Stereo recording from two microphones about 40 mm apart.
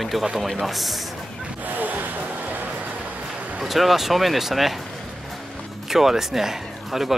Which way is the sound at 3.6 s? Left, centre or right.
Centre.